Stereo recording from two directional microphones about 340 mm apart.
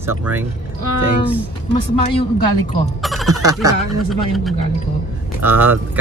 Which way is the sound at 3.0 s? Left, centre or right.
Centre.